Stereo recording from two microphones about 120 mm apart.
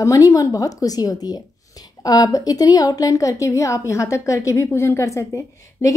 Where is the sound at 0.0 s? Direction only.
30° left (ahead or behind).